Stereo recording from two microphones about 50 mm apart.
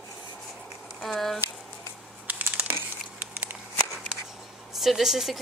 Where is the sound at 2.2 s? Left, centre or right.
Right.